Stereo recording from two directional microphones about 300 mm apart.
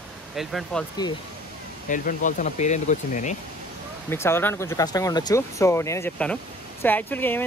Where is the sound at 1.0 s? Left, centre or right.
Centre.